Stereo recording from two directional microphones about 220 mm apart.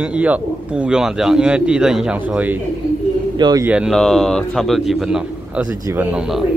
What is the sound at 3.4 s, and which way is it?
Speech, 20° right (ahead or behind).